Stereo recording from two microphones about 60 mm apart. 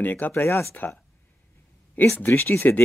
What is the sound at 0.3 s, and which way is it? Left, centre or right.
Speech, left.